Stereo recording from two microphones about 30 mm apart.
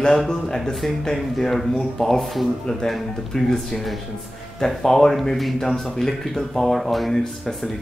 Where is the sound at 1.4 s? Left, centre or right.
Centre.